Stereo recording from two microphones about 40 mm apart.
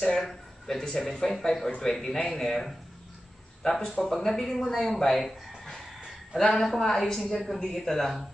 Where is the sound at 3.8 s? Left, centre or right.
Centre.